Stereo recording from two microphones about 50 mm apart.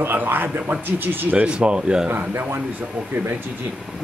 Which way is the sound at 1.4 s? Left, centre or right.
Right.